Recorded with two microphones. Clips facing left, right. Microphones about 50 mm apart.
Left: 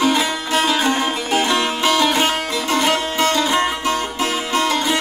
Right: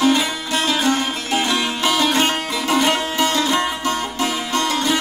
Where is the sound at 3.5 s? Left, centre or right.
Centre.